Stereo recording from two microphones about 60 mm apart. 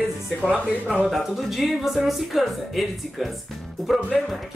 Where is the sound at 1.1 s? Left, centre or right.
Centre.